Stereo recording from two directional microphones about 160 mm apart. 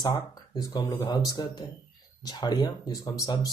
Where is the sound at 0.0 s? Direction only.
20° left (ahead or behind).